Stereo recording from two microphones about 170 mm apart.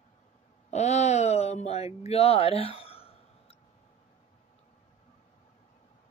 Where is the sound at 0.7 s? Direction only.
40° left (ahead or behind).